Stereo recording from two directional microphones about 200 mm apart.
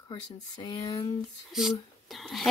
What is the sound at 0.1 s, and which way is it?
Speech, 25° left (ahead or behind).